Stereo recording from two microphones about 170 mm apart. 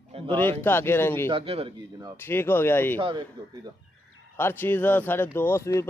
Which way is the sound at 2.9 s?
30° right (ahead or behind).